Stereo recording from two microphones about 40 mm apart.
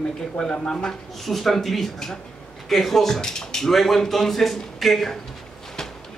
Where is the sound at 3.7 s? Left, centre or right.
Centre.